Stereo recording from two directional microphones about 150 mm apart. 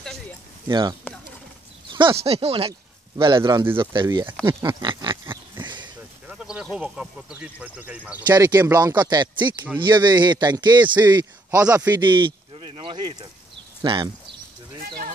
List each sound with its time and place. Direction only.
0.7 s a man's voice: 30° right (ahead or behind)
5.1 s pig: 15° right (ahead or behind)
6.2 s speech: 5° right (ahead or behind)
8.3 s a man's voice: 20° right (ahead or behind)